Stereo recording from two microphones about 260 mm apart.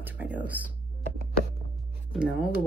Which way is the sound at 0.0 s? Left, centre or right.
Centre.